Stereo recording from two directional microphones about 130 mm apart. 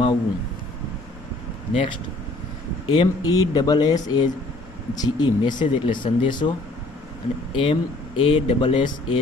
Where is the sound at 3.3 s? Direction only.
30° left (ahead or behind).